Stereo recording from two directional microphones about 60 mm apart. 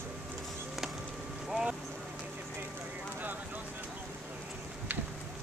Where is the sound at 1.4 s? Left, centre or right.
Centre.